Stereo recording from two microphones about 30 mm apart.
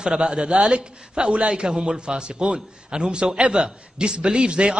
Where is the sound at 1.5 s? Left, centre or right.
Right.